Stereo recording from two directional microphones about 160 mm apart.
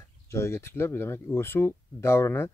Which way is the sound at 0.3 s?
15° left (ahead or behind).